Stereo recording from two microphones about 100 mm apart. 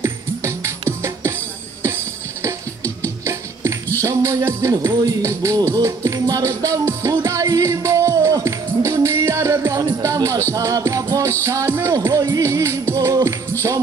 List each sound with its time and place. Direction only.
0.0 s music: 30° right (ahead or behind)
3.0 s music: 30° right (ahead or behind)